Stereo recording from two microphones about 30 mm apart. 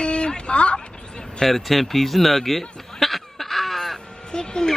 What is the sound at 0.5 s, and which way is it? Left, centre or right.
Speech, left.